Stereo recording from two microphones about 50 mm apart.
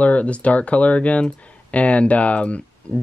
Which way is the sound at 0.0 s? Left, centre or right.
Left.